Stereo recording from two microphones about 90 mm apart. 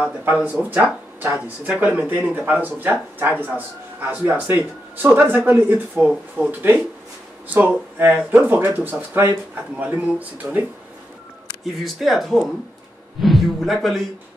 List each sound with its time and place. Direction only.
0.0 s speech: 20° right (ahead or behind)
11.6 s speech: centre (ahead or behind)